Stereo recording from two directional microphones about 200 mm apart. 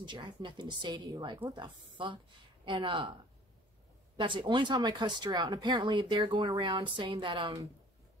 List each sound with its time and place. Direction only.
0.0 s speech: 25° right (ahead or behind)
4.2 s speech: 25° right (ahead or behind)